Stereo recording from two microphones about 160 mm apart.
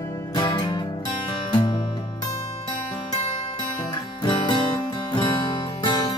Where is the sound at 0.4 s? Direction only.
30° left (ahead or behind).